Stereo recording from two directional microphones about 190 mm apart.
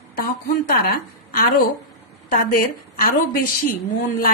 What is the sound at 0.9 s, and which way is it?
A woman's voice, 50° left (ahead or behind).